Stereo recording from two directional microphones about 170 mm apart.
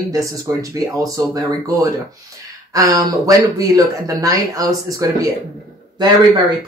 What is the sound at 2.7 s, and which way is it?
Speech, 20° right (ahead or behind).